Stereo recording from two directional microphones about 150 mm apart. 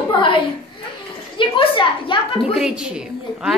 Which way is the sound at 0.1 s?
35° left (ahead or behind).